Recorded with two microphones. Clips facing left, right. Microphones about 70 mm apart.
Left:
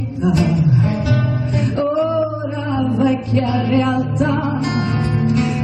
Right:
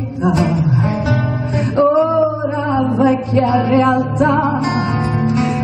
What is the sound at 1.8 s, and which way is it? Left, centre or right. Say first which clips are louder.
Music: right 6 dB; right.